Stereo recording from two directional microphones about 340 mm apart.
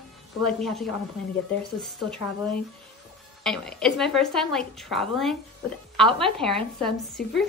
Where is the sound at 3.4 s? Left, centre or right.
Centre.